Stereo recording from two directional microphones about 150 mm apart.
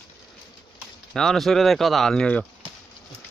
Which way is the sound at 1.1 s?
5° left (ahead or behind).